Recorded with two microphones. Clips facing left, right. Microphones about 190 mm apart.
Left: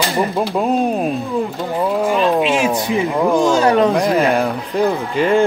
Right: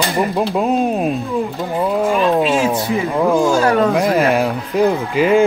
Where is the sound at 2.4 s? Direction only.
15° left (ahead or behind).